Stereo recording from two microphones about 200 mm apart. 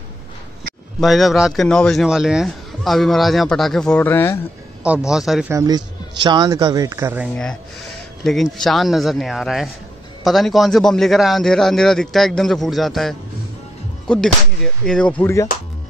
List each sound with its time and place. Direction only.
1.0 s speech: centre (ahead or behind)
4.8 s speech: 5° right (ahead or behind)
5.5 s a man's voice: 20° right (ahead or behind)
8.2 s speech: centre (ahead or behind)